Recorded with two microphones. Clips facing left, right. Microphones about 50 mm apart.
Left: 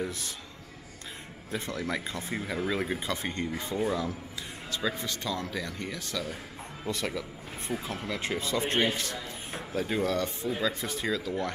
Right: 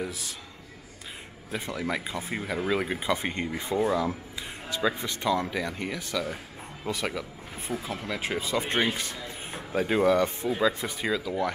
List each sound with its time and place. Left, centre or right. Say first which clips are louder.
0.0 s a man's voice: even; centre
1.5 s speech: right 2 dB; centre
3.3 s speech: right 3 dB; right; by 8.6 s centre
8.6 s speech: right 1 dB; right